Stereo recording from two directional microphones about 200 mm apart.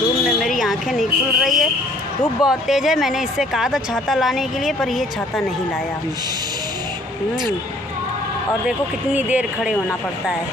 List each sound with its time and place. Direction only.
0.4 s a woman's voice: centre (ahead or behind)
8.6 s speech: 5° right (ahead or behind)